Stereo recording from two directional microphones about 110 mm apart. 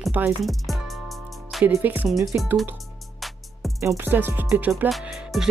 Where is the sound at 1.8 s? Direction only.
15° right (ahead or behind).